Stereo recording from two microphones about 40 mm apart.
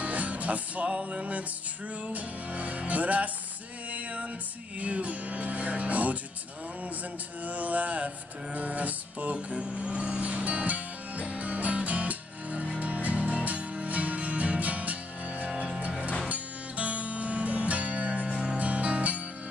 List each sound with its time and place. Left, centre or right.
0.0 s music: right
7.4 s music: right
9.5 s music: right
18.3 s music: centre
18.6 s music: right